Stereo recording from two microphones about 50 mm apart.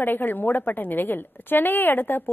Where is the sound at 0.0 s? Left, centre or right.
Left.